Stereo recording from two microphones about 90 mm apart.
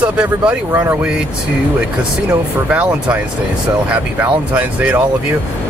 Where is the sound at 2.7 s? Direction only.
15° right (ahead or behind).